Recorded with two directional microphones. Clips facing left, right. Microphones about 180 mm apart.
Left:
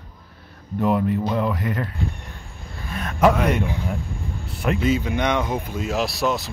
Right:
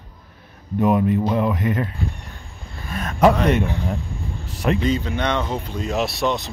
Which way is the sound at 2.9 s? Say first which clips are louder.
Right 2 dB; 40° right (ahead or behind).